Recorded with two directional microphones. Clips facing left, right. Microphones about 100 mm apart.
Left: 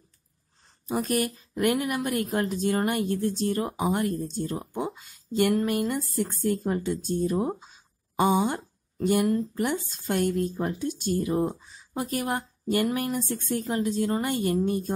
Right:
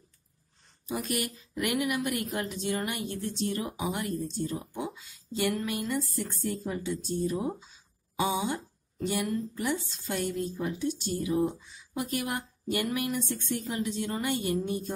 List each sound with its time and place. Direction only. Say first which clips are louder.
0.8 s a woman's voice: left 6 dB; 40° left (ahead or behind)